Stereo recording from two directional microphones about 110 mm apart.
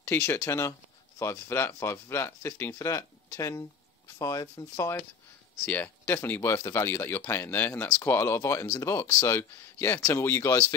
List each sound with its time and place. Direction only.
0.0 s speech: 20° left (ahead or behind)
5.7 s speech: 15° left (ahead or behind)